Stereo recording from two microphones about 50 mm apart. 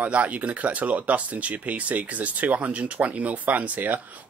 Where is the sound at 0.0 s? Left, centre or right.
Right.